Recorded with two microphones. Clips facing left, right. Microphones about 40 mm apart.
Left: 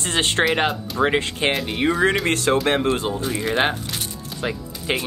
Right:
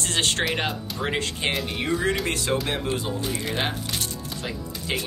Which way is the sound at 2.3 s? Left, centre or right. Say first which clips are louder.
Left 7 dB; left.